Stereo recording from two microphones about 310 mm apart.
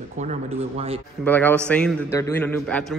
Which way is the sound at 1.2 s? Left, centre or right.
Centre.